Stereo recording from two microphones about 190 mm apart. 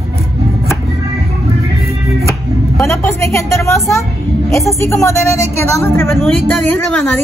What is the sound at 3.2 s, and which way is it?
Speech, 15° left (ahead or behind).